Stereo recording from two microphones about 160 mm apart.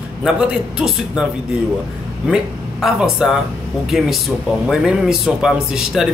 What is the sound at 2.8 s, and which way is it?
A man's voice, 5° right (ahead or behind).